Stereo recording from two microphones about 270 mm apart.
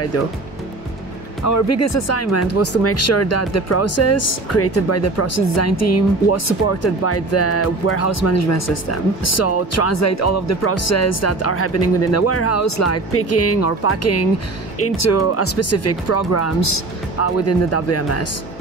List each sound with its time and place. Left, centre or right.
1.4 s speech: left
17.2 s speech: left